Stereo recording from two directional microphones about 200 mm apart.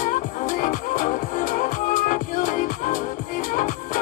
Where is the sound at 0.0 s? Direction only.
40° left (ahead or behind).